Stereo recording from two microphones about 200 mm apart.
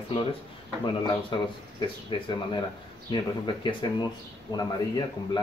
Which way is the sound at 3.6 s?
20° left (ahead or behind).